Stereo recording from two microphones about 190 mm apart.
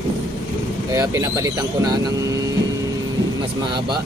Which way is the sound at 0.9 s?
15° right (ahead or behind).